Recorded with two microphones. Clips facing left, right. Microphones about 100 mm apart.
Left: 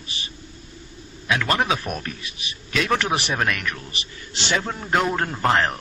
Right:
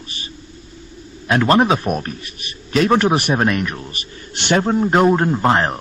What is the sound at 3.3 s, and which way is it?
Speech, 30° right (ahead or behind).